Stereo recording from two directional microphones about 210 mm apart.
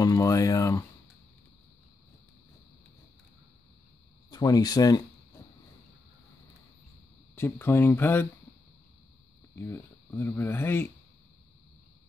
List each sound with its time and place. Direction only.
0.0 s speech: 15° left (ahead or behind)
4.3 s speech: 20° left (ahead or behind)
7.3 s speech: 10° left (ahead or behind)
9.6 s speech: 10° left (ahead or behind)